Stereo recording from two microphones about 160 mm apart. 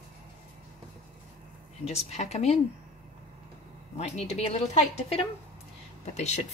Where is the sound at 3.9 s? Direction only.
40° left (ahead or behind).